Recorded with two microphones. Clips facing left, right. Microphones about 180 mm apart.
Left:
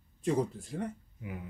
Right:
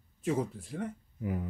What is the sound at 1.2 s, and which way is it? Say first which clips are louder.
Speech: right 12 dB; 40° right (ahead or behind).